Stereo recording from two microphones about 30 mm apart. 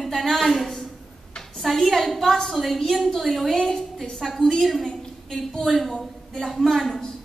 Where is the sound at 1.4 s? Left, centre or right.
Centre.